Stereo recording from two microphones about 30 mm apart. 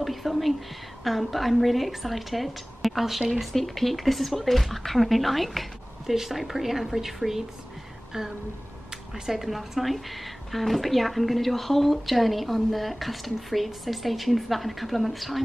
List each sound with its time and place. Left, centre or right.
0.0 s whispering: centre
1.0 s a woman's voice: centre
3.5 s a woman's voice: centre
9.1 s a woman's voice: centre